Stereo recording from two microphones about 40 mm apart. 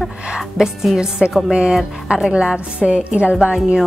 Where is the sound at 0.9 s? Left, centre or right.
Centre.